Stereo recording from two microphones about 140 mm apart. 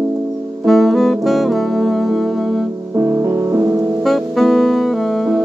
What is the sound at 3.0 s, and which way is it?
Music, 20° right (ahead or behind).